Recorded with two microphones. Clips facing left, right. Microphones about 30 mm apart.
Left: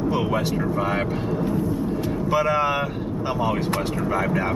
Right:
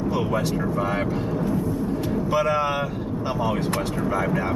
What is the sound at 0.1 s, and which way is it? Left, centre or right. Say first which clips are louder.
Speech: left 1 dB; centre.